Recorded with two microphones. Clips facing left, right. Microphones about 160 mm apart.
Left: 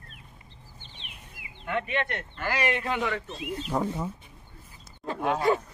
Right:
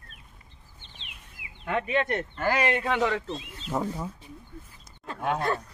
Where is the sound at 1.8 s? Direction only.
40° right (ahead or behind).